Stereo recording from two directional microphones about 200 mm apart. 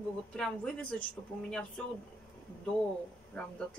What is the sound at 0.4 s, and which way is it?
Speech, 5° left (ahead or behind).